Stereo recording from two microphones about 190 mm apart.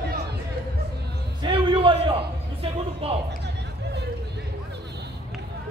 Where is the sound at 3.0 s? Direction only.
30° right (ahead or behind).